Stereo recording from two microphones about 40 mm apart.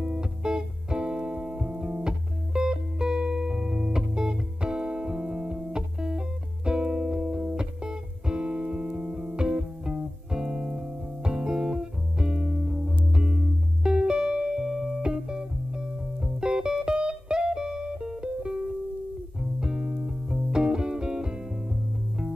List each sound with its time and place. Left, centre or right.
0.0 s music: centre
14.6 s music: centre
19.6 s music: centre